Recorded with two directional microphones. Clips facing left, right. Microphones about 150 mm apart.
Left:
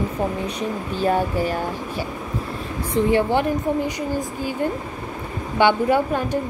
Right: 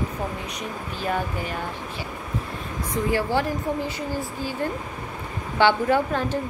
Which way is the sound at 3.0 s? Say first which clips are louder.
Left 5 dB; 25° left (ahead or behind).